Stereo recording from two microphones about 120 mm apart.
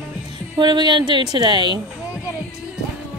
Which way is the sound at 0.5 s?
35° right (ahead or behind).